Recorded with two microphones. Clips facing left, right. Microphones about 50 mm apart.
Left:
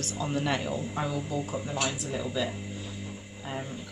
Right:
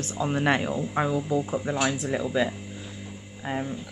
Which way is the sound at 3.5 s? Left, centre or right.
Right.